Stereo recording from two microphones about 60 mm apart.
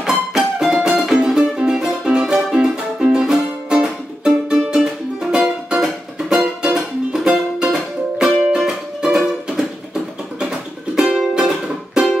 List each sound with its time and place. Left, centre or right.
0.0 s music: centre
11.3 s music: centre